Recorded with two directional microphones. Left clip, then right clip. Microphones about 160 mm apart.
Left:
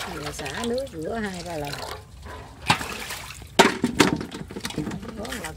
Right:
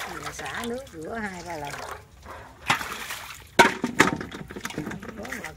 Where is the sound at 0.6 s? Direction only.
25° left (ahead or behind).